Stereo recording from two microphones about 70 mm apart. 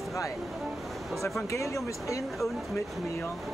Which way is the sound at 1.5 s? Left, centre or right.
Left.